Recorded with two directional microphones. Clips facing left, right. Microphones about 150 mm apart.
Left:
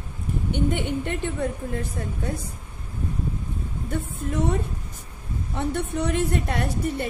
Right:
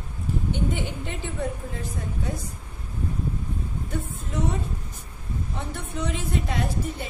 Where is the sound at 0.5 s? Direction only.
60° left (ahead or behind).